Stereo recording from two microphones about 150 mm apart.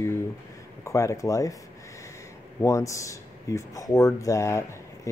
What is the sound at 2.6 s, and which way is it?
Speech, 20° left (ahead or behind).